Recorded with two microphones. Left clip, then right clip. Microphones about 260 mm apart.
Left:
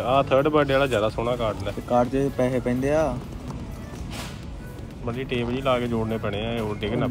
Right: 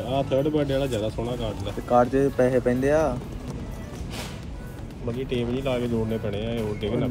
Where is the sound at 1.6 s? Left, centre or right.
Left.